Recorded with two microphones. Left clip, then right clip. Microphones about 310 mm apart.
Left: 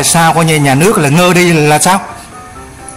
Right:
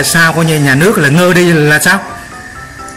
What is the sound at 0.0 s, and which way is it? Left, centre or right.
Speech, centre.